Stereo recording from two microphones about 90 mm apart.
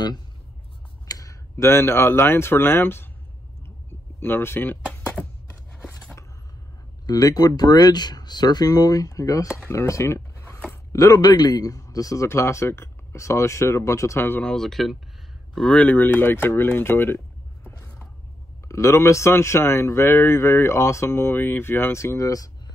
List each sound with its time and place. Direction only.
1.0 s speech: 40° left (ahead or behind); by 3.1 s 25° left (ahead or behind)
4.2 s speech: 25° left (ahead or behind)
7.1 s speech: 45° left (ahead or behind)
10.9 s a man's voice: 40° left (ahead or behind)
14.4 s speech: 5° left (ahead or behind)
15.5 s speech: 10° left (ahead or behind)
18.7 s a man's voice: 35° left (ahead or behind)